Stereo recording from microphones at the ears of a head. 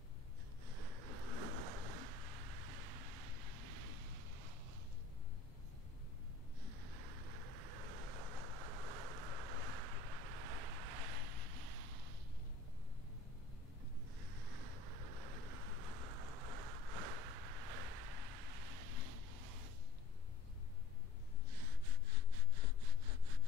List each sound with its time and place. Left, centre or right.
0.7 s waves: right
6.9 s vehicle: right
14.2 s vehicle: right
21.6 s sawing: right